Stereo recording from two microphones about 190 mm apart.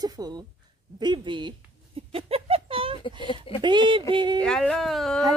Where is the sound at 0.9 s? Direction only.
25° right (ahead or behind).